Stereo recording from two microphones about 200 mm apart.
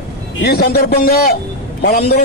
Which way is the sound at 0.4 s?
55° left (ahead or behind).